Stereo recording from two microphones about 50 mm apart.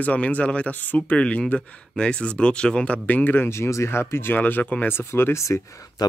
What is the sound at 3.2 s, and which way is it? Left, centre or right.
Speech, left.